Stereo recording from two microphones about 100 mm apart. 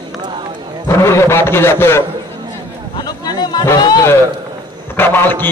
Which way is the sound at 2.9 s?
40° left (ahead or behind).